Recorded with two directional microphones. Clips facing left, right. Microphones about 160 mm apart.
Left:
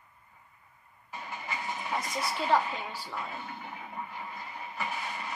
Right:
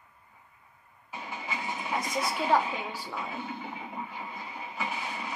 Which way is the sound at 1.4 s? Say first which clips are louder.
Right 1 dB; 10° right (ahead or behind).